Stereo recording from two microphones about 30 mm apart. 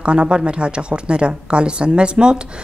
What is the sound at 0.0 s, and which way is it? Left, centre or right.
A woman's voice, right.